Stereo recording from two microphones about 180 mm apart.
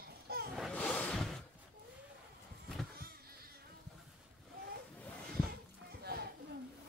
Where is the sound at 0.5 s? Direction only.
Centre (ahead or behind).